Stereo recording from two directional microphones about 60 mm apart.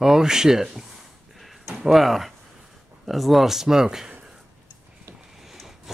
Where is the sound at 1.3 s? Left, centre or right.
Centre.